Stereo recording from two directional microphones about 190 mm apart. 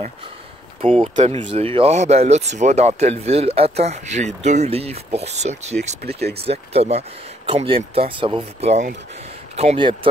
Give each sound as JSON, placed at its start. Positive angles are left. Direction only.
{"t": 0.7, "sound": "speech", "side_deg": -30}